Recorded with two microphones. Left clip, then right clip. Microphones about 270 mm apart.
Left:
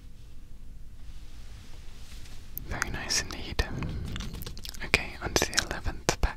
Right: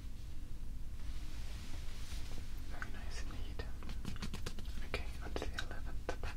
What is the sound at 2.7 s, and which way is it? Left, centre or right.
Whispering, left.